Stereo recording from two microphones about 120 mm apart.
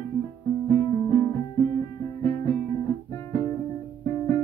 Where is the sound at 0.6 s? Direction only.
25° left (ahead or behind).